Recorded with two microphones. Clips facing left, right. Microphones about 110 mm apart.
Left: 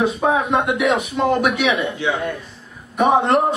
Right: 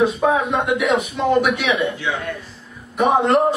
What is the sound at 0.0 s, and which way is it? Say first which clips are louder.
A man's voice: right 1 dB; centre (ahead or behind).